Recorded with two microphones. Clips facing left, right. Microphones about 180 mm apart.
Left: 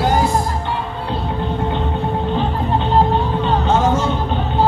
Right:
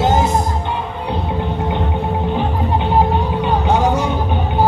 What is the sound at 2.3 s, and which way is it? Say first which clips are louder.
Music: even; 15° right (ahead or behind).